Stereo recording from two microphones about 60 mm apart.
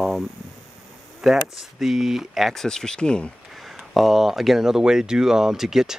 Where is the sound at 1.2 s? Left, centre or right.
Centre.